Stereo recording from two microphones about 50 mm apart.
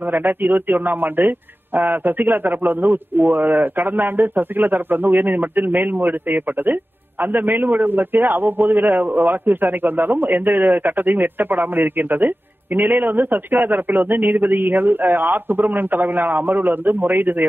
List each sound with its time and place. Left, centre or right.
0.1 s a man's voice: right